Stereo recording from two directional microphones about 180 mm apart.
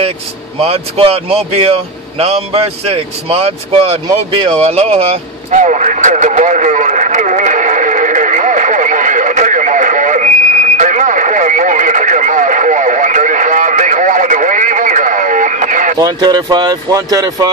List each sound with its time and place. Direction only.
0.6 s speech: 30° right (ahead or behind)
4.5 s vehicle: 35° right (ahead or behind)
16.0 s speech: 25° right (ahead or behind)